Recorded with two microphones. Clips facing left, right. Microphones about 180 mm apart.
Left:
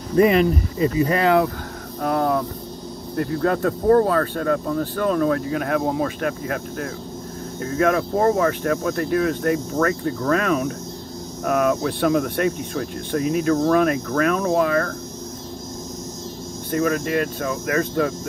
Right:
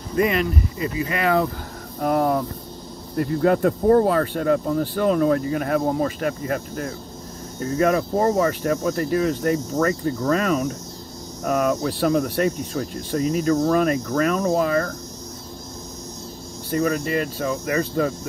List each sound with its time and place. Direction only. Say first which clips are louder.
0.2 s speech: left 5 dB; 35° left (ahead or behind)
2.0 s vehicle: right 1 dB; 5° right (ahead or behind)
3.2 s speech: right 2 dB; 5° right (ahead or behind)
16.7 s speech: left 1 dB; centre (ahead or behind)